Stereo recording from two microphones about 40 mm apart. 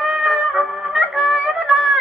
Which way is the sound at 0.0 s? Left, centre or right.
Centre.